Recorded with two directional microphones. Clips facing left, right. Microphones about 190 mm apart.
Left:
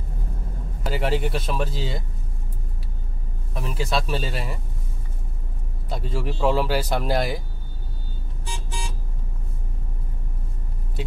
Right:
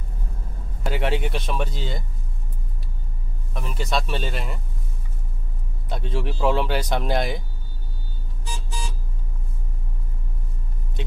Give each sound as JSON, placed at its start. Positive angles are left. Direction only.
{"t": 0.8, "sound": "speech", "side_deg": 0}
{"t": 3.5, "sound": "speech", "side_deg": 5}
{"t": 5.9, "sound": "speech", "side_deg": 0}